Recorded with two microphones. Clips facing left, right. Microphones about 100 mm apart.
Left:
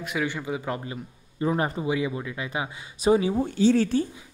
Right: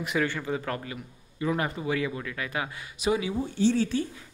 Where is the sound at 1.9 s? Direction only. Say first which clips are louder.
Left 2 dB; 15° left (ahead or behind).